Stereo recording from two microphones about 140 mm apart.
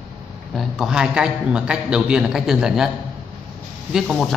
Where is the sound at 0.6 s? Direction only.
5° right (ahead or behind).